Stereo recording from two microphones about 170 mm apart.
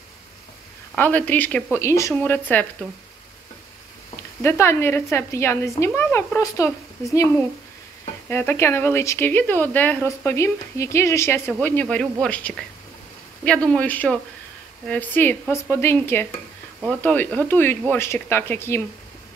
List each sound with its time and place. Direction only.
0.9 s speech: 10° left (ahead or behind)
4.4 s speech: 15° left (ahead or behind)
8.3 s speech: 10° left (ahead or behind)